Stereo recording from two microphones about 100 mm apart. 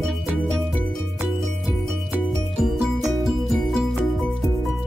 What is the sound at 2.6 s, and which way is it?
Music, centre (ahead or behind).